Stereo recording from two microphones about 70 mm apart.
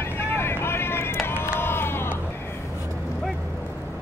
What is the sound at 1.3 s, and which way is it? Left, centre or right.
Crowd, left.